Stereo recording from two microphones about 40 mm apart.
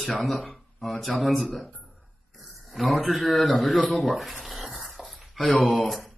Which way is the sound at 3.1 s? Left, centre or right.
Centre.